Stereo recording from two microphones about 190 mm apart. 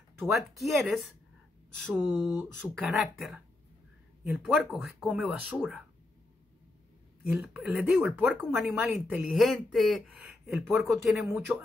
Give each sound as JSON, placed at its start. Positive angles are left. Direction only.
{"t": 0.2, "sound": "a woman's voice", "side_deg": 0}
{"t": 7.4, "sound": "a woman's voice", "side_deg": -5}